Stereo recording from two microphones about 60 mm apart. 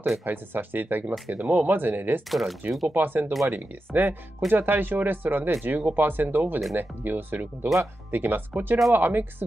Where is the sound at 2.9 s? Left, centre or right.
Right.